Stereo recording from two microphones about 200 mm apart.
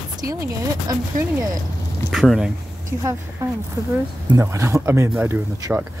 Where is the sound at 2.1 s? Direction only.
Centre (ahead or behind).